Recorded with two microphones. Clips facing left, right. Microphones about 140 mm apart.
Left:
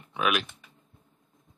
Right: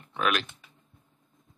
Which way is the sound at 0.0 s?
5° left (ahead or behind).